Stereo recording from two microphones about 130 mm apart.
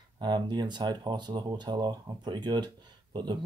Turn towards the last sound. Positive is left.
turn(degrees=-35)  # may be behind; listen again after turning